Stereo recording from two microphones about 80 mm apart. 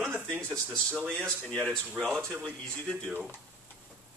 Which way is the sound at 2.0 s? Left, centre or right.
Centre.